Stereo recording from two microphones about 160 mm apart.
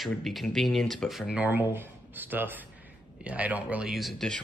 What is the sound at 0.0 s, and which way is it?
Speech, centre (ahead or behind).